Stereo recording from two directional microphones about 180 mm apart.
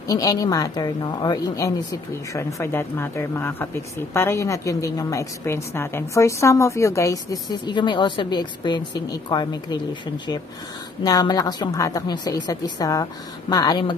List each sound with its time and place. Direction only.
0.0 s a woman's voice: 20° left (ahead or behind)
11.1 s a woman's voice: 20° left (ahead or behind)